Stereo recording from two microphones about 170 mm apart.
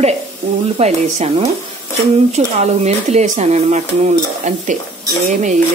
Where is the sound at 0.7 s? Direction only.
40° right (ahead or behind).